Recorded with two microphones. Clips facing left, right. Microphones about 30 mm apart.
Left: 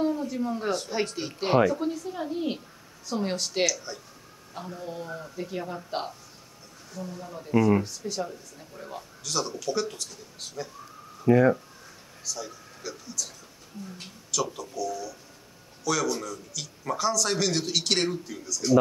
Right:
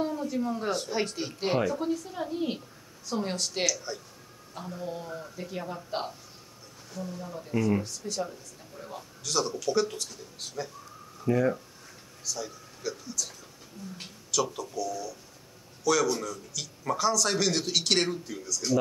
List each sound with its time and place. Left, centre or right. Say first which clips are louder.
0.0 s speech: left 2 dB; centre
11.2 s speech: left 6 dB; left
12.3 s speech: even; centre